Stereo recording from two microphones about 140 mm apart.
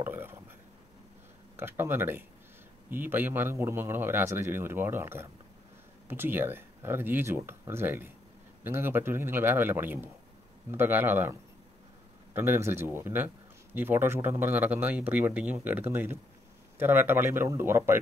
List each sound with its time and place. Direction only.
0.0 s a sound: 15° right (ahead or behind)
1.6 s a man's voice: 15° right (ahead or behind)
12.4 s a man's voice: 20° right (ahead or behind)